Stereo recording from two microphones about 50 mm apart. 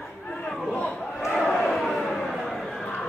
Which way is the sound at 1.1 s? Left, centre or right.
Centre.